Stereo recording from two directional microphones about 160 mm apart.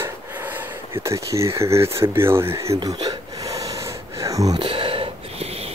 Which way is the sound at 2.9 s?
20° right (ahead or behind).